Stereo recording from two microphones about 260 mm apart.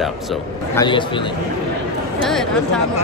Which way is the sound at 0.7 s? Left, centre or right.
Centre.